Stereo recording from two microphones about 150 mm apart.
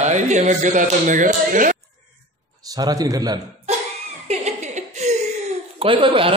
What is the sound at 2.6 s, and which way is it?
Speech, 25° right (ahead or behind).